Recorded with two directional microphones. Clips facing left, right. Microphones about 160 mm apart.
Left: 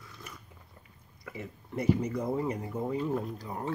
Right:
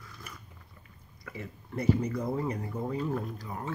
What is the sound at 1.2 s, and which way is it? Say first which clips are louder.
Speech: even; 20° left (ahead or behind).